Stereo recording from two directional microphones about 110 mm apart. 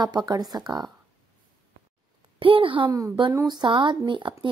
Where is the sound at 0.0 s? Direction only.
40° right (ahead or behind).